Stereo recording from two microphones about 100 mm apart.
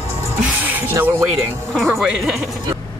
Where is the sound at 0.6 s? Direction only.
20° right (ahead or behind).